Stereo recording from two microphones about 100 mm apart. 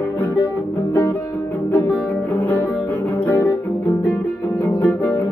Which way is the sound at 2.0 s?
20° left (ahead or behind).